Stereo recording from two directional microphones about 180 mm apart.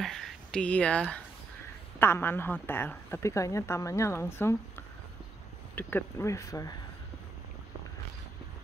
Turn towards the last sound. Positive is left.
turn(degrees=20)  # may be behind; listen again after turning